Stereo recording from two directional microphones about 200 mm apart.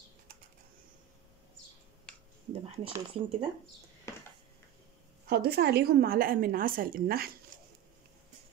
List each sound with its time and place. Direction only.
2.6 s speech: 30° right (ahead or behind)
5.3 s a woman's voice: 55° right (ahead or behind)
7.5 s a sound: 45° right (ahead or behind)